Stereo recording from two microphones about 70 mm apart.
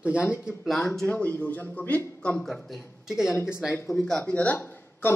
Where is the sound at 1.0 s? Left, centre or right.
Left.